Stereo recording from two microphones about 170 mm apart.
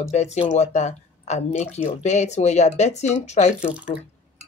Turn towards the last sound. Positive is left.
turn(degrees=-5)  # may be behind; listen again after turning